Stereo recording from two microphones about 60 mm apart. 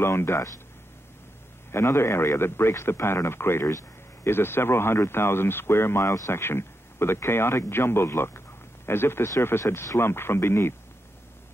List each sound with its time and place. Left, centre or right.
0.0 s a man's voice: left
1.7 s a man's voice: left